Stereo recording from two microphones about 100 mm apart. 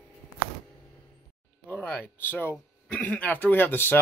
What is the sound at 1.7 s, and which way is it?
Speech, 15° left (ahead or behind).